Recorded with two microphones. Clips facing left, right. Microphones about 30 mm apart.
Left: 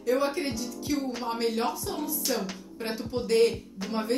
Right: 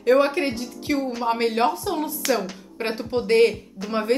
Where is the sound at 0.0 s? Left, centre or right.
Right.